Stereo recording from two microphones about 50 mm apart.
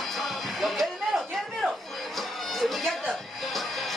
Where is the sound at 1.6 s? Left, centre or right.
Centre.